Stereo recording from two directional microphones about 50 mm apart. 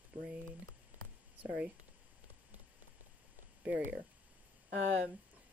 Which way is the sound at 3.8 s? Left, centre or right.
Right.